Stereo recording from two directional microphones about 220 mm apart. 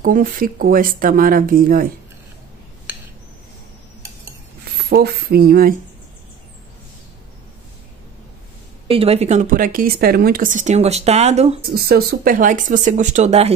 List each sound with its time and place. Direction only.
0.0 s speech: 40° right (ahead or behind)
4.7 s speech: 45° right (ahead or behind)
8.8 s speech: 25° right (ahead or behind)
11.7 s speech: 45° right (ahead or behind)